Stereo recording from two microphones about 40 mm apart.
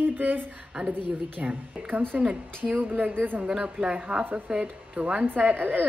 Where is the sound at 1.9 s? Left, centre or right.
Right.